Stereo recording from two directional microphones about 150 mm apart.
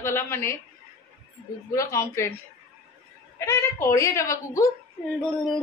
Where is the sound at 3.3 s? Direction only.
15° left (ahead or behind).